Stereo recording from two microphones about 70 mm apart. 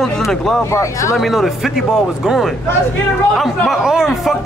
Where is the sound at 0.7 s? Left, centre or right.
Left.